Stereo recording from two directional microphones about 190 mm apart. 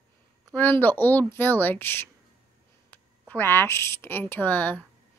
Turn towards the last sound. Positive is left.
turn(degrees=10)  # may be behind; listen again after turning